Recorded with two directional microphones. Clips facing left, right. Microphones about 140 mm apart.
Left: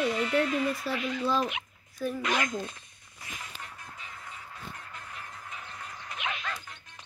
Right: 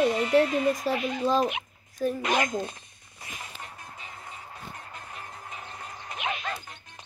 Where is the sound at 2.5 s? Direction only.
30° right (ahead or behind).